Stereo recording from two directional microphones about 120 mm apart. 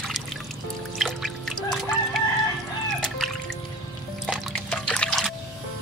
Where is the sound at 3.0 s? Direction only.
5° left (ahead or behind).